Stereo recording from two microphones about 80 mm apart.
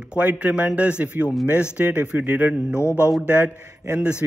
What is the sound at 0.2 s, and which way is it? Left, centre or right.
A man's voice, centre.